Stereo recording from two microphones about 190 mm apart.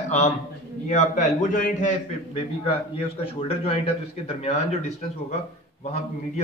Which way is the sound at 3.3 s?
30° left (ahead or behind).